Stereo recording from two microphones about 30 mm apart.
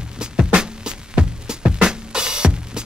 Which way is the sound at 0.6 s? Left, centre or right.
Right.